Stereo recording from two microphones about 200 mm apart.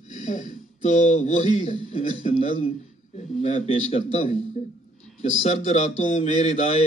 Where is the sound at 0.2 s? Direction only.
35° left (ahead or behind).